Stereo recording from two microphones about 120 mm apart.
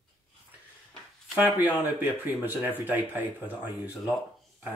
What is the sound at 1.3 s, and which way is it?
Speech, 15° right (ahead or behind).